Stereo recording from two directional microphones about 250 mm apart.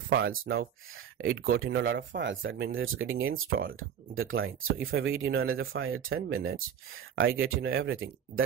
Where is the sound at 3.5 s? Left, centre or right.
Right.